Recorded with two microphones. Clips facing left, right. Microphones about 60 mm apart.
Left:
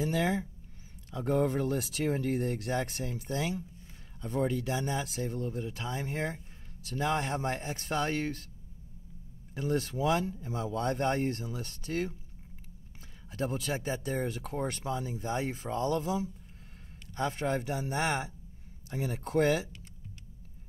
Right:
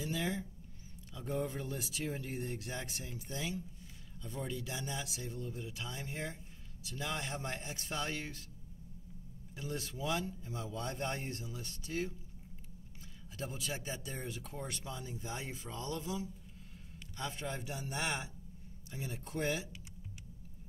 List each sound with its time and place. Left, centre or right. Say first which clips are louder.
0.0 s speech: left 8 dB; left
1.1 s speech: left 9 dB; left
9.6 s speech: left 10 dB; left
13.4 s speech: left 8 dB; left
19.2 s speech: left 10 dB; left